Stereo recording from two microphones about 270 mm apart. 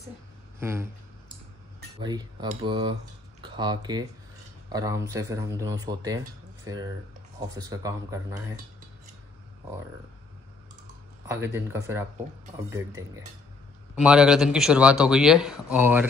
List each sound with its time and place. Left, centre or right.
0.6 s speech: centre
2.0 s speech: centre
11.2 s speech: centre